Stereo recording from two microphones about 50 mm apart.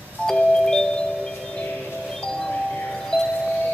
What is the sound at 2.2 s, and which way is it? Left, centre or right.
Doorbell, centre.